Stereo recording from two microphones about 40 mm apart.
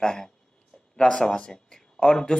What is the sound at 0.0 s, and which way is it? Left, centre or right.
Speech, centre.